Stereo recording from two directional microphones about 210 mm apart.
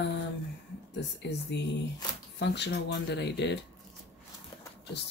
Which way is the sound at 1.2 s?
55° left (ahead or behind).